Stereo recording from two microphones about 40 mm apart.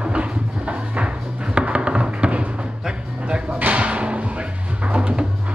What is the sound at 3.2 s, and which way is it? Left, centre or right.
Music, right.